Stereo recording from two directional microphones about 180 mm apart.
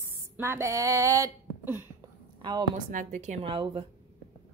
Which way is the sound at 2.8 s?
45° right (ahead or behind).